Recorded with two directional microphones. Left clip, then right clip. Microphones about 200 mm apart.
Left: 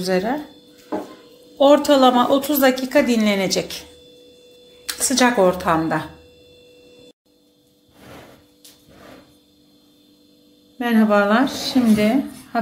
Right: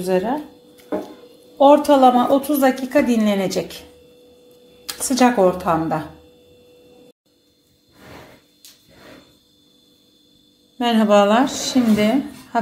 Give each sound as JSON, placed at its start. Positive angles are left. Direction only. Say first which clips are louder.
{"t": 0.0, "sound": "speech", "louder": "right 1 dB", "side_deg": 0}
{"t": 1.6, "sound": "speech", "louder": "right 1 dB", "side_deg": 0}
{"t": 4.8, "sound": "speech", "louder": "right 1 dB", "side_deg": -5}
{"t": 10.8, "sound": "a woman's voice", "louder": "right 3 dB", "side_deg": -25}